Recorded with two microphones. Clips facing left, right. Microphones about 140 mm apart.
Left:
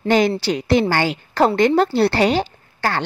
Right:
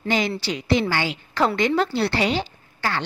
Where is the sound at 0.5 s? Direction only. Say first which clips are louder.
Left 5 dB; 50° left (ahead or behind).